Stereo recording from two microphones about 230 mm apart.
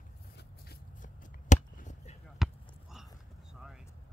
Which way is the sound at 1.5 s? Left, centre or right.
Left.